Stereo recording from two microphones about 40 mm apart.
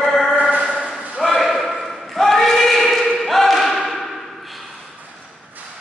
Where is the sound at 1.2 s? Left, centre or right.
Centre.